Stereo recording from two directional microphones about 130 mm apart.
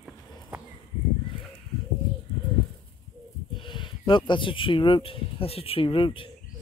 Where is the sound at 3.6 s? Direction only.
40° left (ahead or behind).